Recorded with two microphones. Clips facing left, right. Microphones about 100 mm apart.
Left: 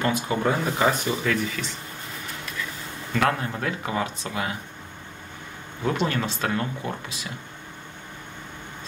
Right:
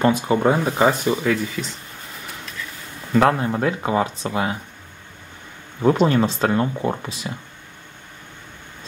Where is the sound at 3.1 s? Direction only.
30° right (ahead or behind).